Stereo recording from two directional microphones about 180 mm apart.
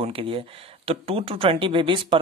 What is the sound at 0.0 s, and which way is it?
Speech, 30° right (ahead or behind).